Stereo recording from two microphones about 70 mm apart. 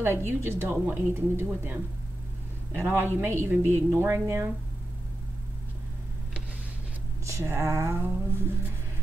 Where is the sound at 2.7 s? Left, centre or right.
Right.